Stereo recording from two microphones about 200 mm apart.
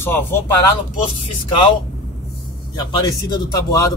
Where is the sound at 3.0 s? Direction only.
20° left (ahead or behind).